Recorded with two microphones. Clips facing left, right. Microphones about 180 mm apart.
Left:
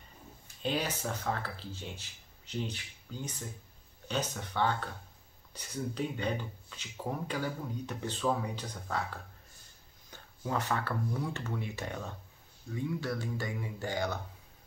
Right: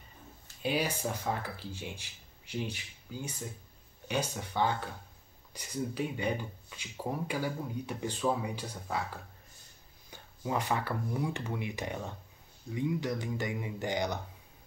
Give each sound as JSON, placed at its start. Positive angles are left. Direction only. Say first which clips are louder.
{"t": 0.6, "sound": "speech", "louder": "right 2 dB", "side_deg": -10}
{"t": 10.4, "sound": "speech", "louder": "right 1 dB", "side_deg": -10}